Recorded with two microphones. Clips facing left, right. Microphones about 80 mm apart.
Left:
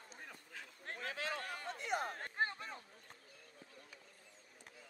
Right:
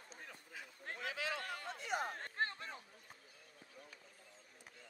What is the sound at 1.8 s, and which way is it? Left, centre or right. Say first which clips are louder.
Chatter: left 1 dB; left.